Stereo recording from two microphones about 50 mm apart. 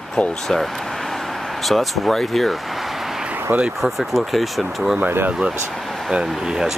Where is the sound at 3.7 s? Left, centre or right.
Centre.